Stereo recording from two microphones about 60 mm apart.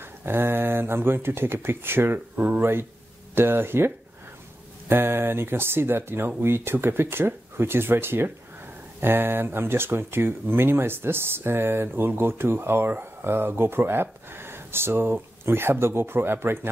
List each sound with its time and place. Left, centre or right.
0.2 s speech: right
2.6 s speech: right